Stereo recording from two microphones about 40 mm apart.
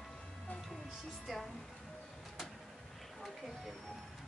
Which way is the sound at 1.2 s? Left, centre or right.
Centre.